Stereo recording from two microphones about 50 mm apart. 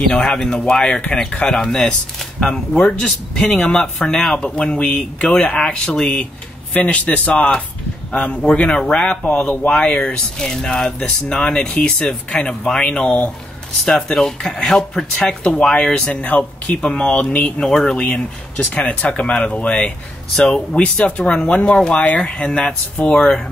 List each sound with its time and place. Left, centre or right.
0.1 s speech: centre
2.8 s speech: centre
3.6 s speech: centre
4.8 s speech: left
5.3 s speech: left
13.8 s speech: centre
17.6 s speech: centre
17.9 s speech: left; by 22.0 s centre
22.0 s speech: left